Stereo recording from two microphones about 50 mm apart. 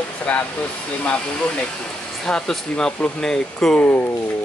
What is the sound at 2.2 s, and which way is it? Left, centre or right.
Speech, centre.